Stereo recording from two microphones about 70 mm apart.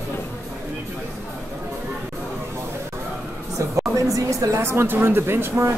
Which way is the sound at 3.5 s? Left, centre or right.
Right.